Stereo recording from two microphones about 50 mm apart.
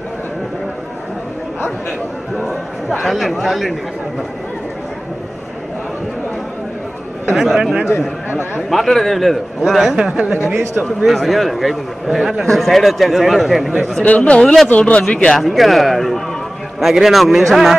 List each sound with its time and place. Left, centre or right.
2.3 s a man's voice: centre
7.3 s a man's voice: centre
9.9 s speech: centre
11.1 s a man's voice: centre
14.0 s a man's voice: left
14.4 s a man's voice: centre
14.7 s a man's voice: left
15.4 s a man's voice: centre